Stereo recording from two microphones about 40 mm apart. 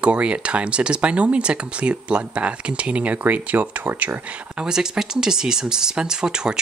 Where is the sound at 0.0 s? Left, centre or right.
Right.